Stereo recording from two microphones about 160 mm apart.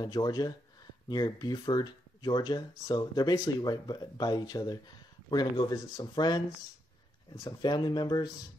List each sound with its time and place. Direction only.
0.0 s speech: 25° left (ahead or behind)
7.4 s speech: 25° left (ahead or behind)